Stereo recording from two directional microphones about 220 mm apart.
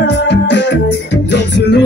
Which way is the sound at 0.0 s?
50° left (ahead or behind).